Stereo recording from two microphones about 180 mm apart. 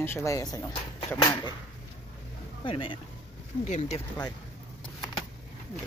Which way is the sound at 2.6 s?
30° left (ahead or behind).